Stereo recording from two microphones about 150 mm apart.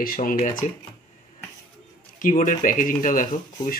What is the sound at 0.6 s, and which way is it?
Speech, 55° left (ahead or behind).